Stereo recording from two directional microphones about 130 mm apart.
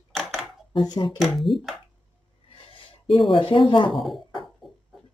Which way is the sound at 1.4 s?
Centre (ahead or behind).